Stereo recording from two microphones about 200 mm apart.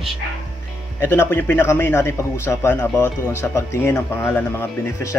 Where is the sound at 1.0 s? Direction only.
10° left (ahead or behind).